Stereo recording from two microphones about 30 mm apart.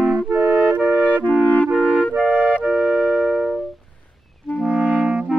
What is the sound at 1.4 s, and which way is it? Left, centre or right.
Clarinet, left.